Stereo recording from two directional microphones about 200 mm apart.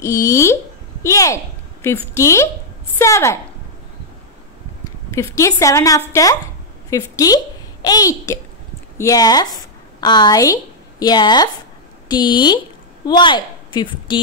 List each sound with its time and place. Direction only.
0.0 s a woman's voice: 15° left (ahead or behind)
4.8 s a child's voice: 15° left (ahead or behind)